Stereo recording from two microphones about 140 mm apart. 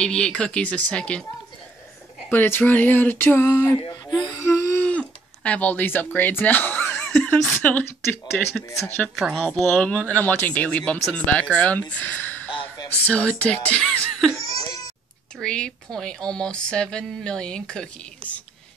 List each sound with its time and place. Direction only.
0.0 s speech: 5° left (ahead or behind)
2.2 s speech: 15° left (ahead or behind)
3.8 s speech: 35° left (ahead or behind)
4.4 s a sound: 15° left (ahead or behind)
7.1 s speech: 5° left (ahead or behind)
8.6 s speech: 20° left (ahead or behind)
9.0 s speech: 5° left (ahead or behind)
14.5 s a sound: 25° left (ahead or behind)
15.3 s speech: 5° left (ahead or behind)